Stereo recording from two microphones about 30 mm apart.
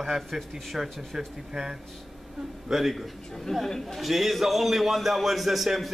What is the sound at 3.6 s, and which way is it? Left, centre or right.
Speech, centre.